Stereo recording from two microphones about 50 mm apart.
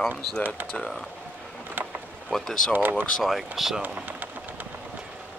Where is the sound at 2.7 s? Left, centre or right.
Right.